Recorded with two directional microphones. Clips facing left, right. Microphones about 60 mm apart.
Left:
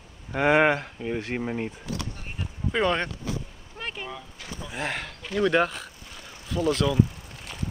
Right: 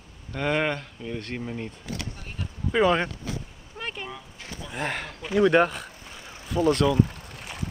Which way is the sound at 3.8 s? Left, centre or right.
Centre.